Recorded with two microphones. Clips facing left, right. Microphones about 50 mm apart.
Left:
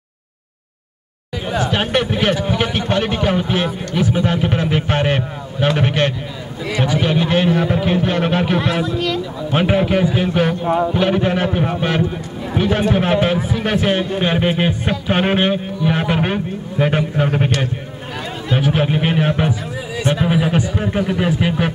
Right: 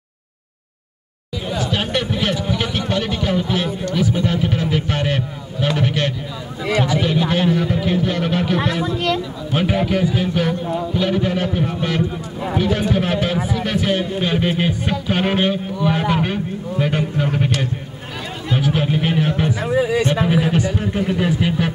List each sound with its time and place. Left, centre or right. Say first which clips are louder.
1.5 s a sound: left 4 dB; left
5.8 s a man's voice: left 3 dB; left
18.5 s speech: left 2 dB; left
19.6 s speech: right 8 dB; right
20.2 s speech: even; centre